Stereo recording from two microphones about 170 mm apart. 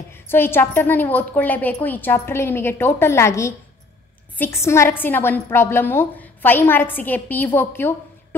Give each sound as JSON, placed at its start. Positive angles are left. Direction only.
{"t": 0.1, "sound": "a woman's voice", "side_deg": 15}